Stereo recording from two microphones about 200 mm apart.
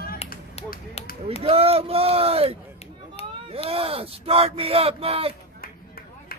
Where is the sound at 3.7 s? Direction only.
30° right (ahead or behind).